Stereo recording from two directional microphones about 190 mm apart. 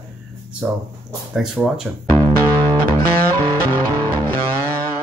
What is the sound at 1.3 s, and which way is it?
Speech, 5° right (ahead or behind).